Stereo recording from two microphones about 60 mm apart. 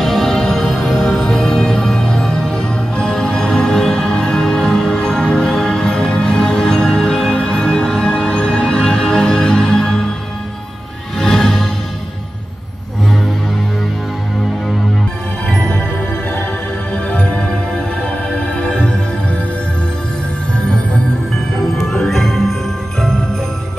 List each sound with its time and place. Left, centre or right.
0.0 s music: centre
11.1 s music: centre
17.1 s music: centre
21.5 s jingle bell: centre